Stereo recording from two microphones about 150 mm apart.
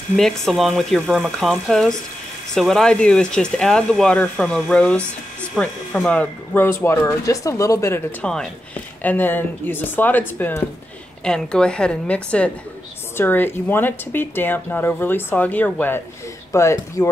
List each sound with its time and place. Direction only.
0.1 s speech: centre (ahead or behind); by 8.0 s 20° left (ahead or behind)
8.2 s speech: 5° left (ahead or behind); by 17.1 s 20° left (ahead or behind)